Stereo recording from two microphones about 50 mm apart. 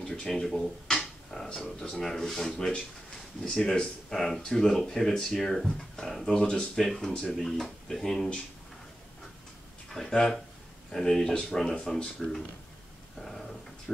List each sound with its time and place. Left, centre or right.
0.0 s speech: centre
9.8 s speech: centre
13.2 s a sound: centre